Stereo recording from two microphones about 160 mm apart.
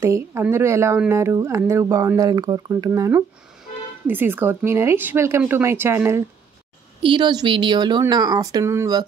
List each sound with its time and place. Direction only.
0.0 s speech: 15° right (ahead or behind)
7.0 s a woman's voice: 30° right (ahead or behind)